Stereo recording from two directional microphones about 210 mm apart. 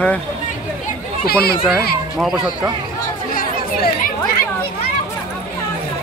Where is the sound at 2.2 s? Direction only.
Centre (ahead or behind).